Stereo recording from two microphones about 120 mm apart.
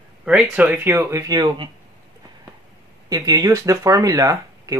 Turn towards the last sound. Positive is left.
turn(degrees=-25)  # may be behind; listen again after turning